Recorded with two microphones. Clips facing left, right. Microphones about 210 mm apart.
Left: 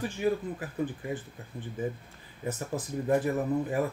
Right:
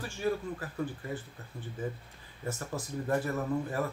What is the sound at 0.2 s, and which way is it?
Speech, 15° left (ahead or behind).